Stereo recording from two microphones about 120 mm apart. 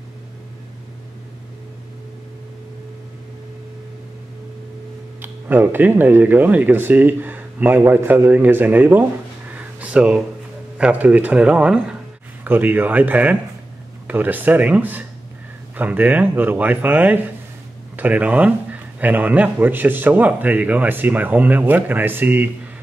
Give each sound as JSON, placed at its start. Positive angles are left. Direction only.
{"t": 5.2, "sound": "a man's voice", "side_deg": -20}
{"t": 9.6, "sound": "a sound", "side_deg": -10}
{"t": 10.8, "sound": "a man's voice", "side_deg": -10}